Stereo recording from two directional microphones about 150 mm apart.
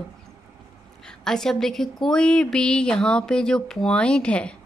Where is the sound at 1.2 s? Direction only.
5° left (ahead or behind).